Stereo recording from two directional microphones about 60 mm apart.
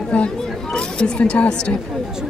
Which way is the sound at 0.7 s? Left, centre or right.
Centre.